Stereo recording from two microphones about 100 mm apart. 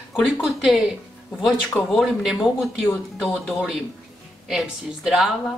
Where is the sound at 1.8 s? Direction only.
Centre (ahead or behind).